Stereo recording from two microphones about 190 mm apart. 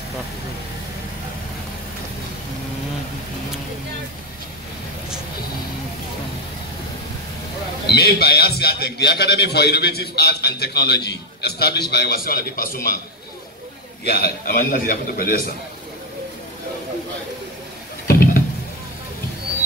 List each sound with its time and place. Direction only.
7.8 s a man's voice: 60° left (ahead or behind)
14.0 s a man's voice: 55° left (ahead or behind)
18.0 s a sound: 50° left (ahead or behind)